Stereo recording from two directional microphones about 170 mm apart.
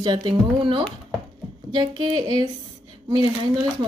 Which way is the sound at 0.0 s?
30° right (ahead or behind).